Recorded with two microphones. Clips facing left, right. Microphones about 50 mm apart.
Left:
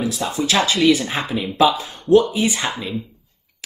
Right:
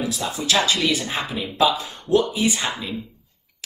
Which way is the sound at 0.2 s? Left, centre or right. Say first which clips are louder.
Left 2 dB; left.